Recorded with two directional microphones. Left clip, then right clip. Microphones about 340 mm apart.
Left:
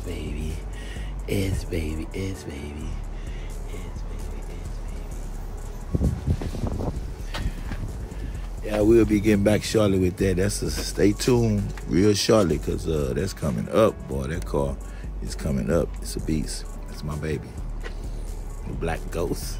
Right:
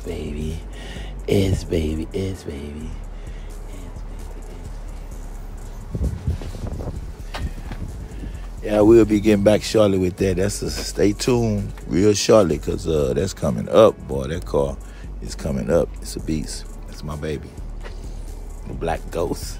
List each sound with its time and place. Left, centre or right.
0.1 s a sound: right
8.6 s speech: right
8.9 s speech: centre
18.8 s speech: centre